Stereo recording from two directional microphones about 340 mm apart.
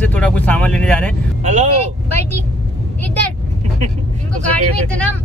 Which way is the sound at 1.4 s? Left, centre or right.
Centre.